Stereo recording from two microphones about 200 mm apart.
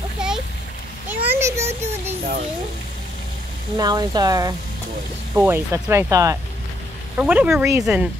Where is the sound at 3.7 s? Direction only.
20° right (ahead or behind).